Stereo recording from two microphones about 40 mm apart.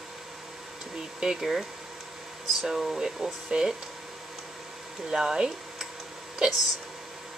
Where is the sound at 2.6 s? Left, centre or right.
Centre.